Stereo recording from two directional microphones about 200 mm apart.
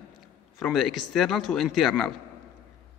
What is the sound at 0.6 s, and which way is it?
A man's voice, centre (ahead or behind).